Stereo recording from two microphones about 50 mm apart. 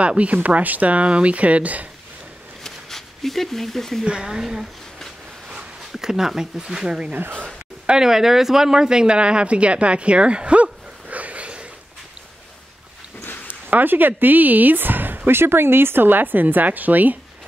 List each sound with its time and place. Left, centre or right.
0.0 s speech: right
2.6 s a sound: centre
4.0 s speech: centre
5.9 s speech: centre
13.5 s speech: right